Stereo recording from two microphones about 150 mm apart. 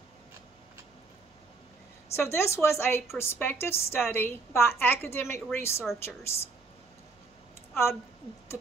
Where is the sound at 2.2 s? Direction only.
15° left (ahead or behind).